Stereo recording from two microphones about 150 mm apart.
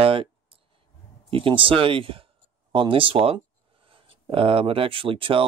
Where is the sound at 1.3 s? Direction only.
35° right (ahead or behind).